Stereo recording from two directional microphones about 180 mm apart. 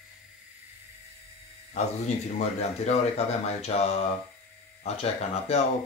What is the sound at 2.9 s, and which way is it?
Speech, 35° left (ahead or behind).